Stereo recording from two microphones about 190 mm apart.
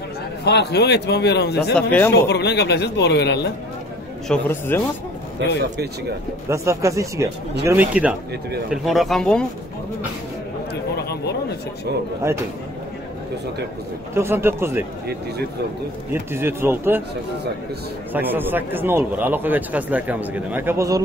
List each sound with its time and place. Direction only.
0.5 s a man's voice: 60° left (ahead or behind)
1.8 s speech: 10° left (ahead or behind)
2.1 s a man's voice: 60° left (ahead or behind)
4.3 s speech: 10° left (ahead or behind)
6.5 s speech: 15° right (ahead or behind); by 9.5 s 5° left (ahead or behind)
10.7 s a sound: 60° left (ahead or behind)
14.1 s speech: 15° right (ahead or behind)
16.1 s speech: 10° right (ahead or behind)
18.1 s speech: 10° right (ahead or behind)